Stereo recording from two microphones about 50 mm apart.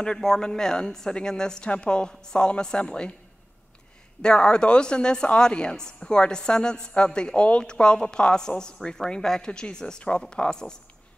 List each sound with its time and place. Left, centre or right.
0.0 s a woman's voice: centre
4.2 s a woman's voice: centre